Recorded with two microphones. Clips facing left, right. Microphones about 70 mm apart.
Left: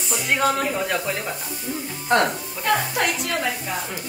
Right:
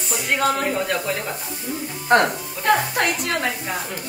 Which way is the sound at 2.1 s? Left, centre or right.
Right.